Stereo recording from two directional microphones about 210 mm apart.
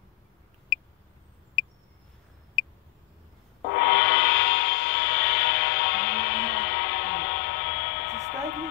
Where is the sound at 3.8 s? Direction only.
55° left (ahead or behind).